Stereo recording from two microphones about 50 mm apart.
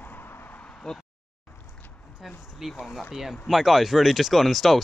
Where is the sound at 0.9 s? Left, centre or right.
Centre.